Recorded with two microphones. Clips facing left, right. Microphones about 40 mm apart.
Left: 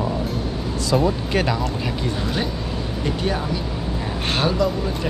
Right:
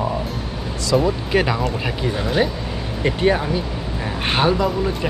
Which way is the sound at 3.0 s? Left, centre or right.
Right.